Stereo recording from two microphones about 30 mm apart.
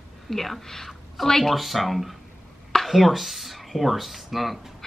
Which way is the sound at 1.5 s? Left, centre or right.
Centre.